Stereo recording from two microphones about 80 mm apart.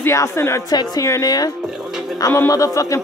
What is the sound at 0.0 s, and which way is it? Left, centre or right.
Speech, left.